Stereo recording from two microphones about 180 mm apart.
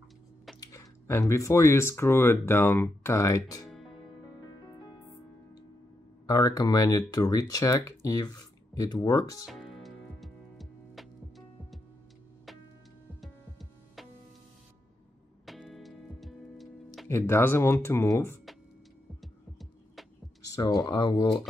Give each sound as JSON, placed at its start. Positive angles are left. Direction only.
{"t": 0.6, "sound": "speech", "side_deg": 15}
{"t": 6.2, "sound": "speech", "side_deg": 20}
{"t": 9.5, "sound": "music", "side_deg": 0}
{"t": 13.2, "sound": "music", "side_deg": 0}
{"t": 15.4, "sound": "music", "side_deg": 0}
{"t": 17.1, "sound": "speech", "side_deg": 15}
{"t": 19.2, "sound": "music", "side_deg": 0}
{"t": 20.4, "sound": "speech", "side_deg": 20}